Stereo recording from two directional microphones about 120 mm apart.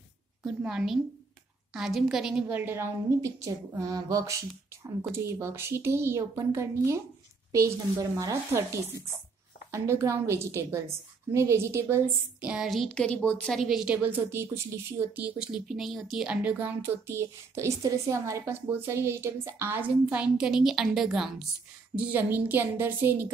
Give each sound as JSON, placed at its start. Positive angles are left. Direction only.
{"t": 0.4, "sound": "a woman's voice", "side_deg": -5}
{"t": 2.5, "sound": "a woman's voice", "side_deg": -20}
{"t": 8.0, "sound": "a woman's voice", "side_deg": -25}
{"t": 9.7, "sound": "a woman's voice", "side_deg": -25}
{"t": 12.4, "sound": "a woman's voice", "side_deg": -5}
{"t": 21.9, "sound": "a woman's voice", "side_deg": -15}